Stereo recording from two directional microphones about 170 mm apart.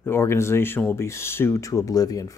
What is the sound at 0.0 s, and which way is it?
Speech, 15° left (ahead or behind).